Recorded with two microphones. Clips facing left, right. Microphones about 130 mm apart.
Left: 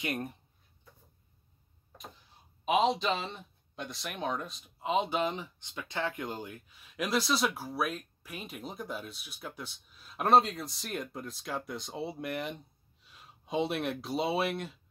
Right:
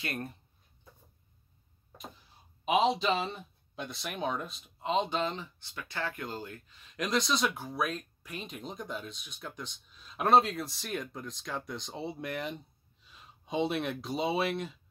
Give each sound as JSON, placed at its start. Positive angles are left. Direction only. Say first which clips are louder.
{"t": 0.0, "sound": "speech", "louder": "left 3 dB", "side_deg": 15}
{"t": 2.6, "sound": "speech", "louder": "even", "side_deg": -5}